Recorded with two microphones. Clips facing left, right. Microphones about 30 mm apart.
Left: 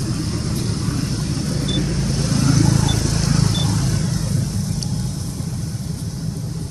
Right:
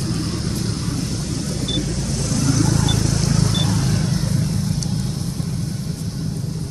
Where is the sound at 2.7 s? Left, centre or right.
Centre.